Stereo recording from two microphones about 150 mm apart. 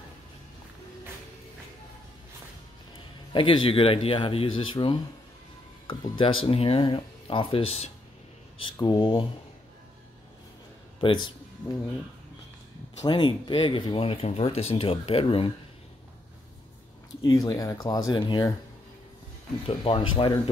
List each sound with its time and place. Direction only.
3.3 s speech: 35° left (ahead or behind)
8.7 s speech: 30° left (ahead or behind)
11.0 s speech: 35° left (ahead or behind)
13.0 s speech: 35° left (ahead or behind)
17.2 s speech: 25° left (ahead or behind)
19.7 s speech: 35° left (ahead or behind)